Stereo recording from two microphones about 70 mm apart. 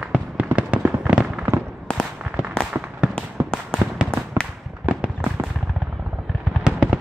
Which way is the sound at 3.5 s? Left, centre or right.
Centre.